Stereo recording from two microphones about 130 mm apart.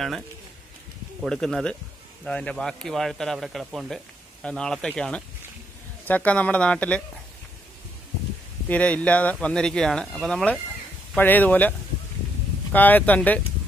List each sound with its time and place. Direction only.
1.2 s a man's voice: 5° left (ahead or behind)
8.6 s speech: 10° left (ahead or behind)
12.7 s speech: 15° left (ahead or behind)